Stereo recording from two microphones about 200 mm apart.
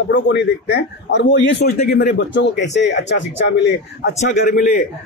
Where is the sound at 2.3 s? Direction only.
60° left (ahead or behind).